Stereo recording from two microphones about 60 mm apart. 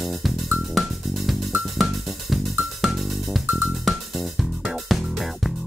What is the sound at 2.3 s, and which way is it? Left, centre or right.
Music, centre.